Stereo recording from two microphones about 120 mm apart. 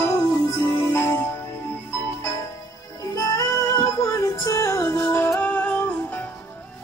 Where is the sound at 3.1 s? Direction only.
30° left (ahead or behind).